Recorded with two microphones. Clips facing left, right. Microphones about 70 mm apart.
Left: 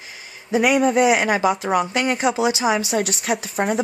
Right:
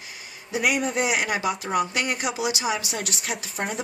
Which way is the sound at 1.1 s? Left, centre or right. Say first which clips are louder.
Left 7 dB; left.